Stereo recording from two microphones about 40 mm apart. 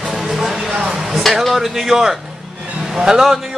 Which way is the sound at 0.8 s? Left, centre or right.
Centre.